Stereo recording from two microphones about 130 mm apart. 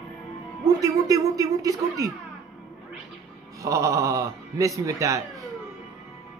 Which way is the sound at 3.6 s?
25° right (ahead or behind).